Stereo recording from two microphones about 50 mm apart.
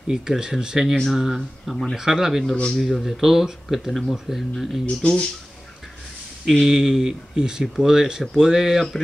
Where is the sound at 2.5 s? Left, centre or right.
Left.